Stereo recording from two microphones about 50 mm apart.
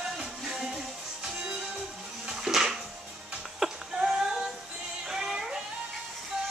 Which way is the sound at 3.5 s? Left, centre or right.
Centre.